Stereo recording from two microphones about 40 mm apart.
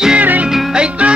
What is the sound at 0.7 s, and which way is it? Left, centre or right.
Music, right.